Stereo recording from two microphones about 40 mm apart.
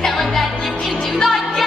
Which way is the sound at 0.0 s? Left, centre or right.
Centre.